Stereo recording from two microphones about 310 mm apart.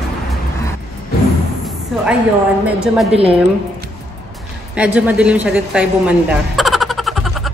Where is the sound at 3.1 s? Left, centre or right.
Centre.